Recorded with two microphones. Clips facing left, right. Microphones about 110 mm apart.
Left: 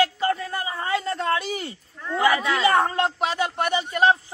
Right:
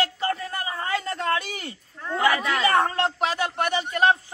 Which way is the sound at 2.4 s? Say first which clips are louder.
Left 1 dB; centre (ahead or behind).